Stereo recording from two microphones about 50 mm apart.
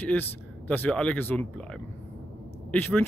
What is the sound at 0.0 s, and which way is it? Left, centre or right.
Speech, left.